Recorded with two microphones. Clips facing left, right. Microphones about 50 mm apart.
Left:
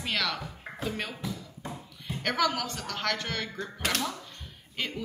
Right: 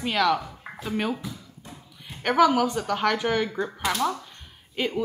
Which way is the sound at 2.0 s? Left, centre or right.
Centre.